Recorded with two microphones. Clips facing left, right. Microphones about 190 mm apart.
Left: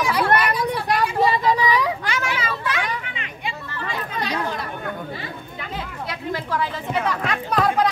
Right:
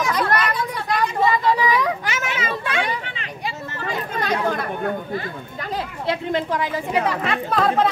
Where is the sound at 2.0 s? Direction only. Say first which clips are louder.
Even; 20° right (ahead or behind).